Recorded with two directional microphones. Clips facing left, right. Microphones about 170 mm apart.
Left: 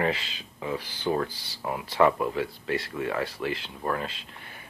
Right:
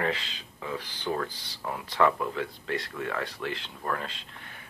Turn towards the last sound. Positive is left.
turn(degrees=15)  # may be behind; listen again after turning